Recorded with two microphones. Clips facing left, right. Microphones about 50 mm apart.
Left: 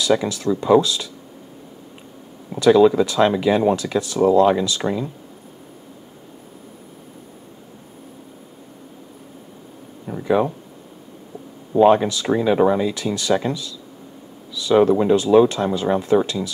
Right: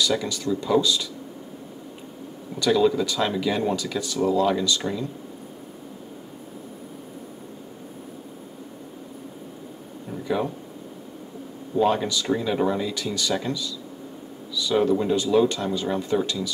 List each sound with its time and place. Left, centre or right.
0.0 s speech: centre
2.5 s speech: centre
10.0 s a sound: left
11.7 s speech: left
12.1 s speech: centre
12.4 s speech: left
12.9 s speech: centre
14.8 s speech: left
15.5 s speech: centre